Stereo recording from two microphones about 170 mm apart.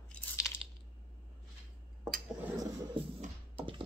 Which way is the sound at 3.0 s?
30° right (ahead or behind).